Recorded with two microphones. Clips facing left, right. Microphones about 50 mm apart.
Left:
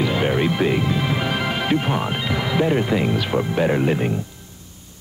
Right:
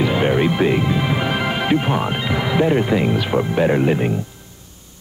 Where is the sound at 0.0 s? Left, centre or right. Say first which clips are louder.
Right 3 dB; centre.